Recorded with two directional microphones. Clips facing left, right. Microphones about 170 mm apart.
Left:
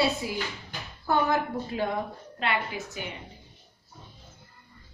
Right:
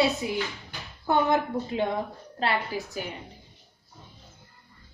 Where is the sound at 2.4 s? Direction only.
35° right (ahead or behind).